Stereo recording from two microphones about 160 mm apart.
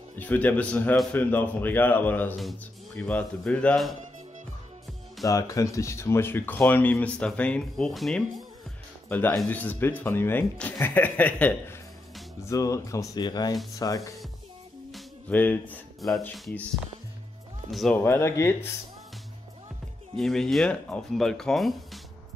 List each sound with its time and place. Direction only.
0.1 s a man's voice: 10° left (ahead or behind)
5.2 s speech: 20° left (ahead or behind); by 8.5 s centre (ahead or behind)
9.1 s speech: 10° left (ahead or behind)
14.9 s music: centre (ahead or behind)
15.3 s speech: 10° left (ahead or behind)
17.9 s speech: 15° left (ahead or behind)
20.2 s speech: centre (ahead or behind)